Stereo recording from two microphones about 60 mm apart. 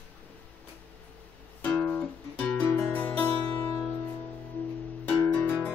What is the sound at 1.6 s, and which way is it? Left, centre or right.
Music, left.